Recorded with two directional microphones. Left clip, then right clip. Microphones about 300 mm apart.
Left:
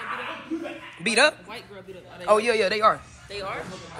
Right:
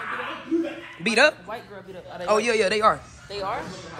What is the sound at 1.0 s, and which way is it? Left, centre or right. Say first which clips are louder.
A man's voice: right 1 dB; centre.